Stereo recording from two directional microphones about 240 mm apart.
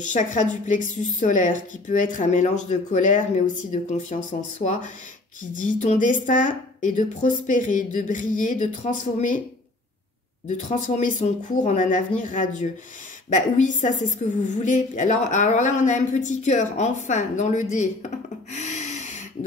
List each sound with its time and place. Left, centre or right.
0.0 s a woman's voice: left
10.7 s a woman's voice: left
18.5 s a sound: left